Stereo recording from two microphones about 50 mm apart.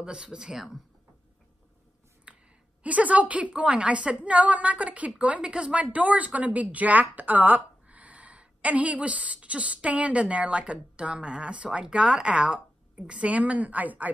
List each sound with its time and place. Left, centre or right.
0.0 s speech: centre
2.3 s a sound: right
2.8 s a woman's voice: right